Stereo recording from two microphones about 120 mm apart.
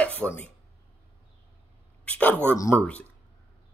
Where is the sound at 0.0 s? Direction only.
10° left (ahead or behind).